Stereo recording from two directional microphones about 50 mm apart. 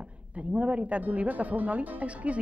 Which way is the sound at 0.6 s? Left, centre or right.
Right.